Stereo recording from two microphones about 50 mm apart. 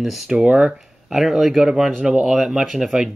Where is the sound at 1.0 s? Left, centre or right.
Centre.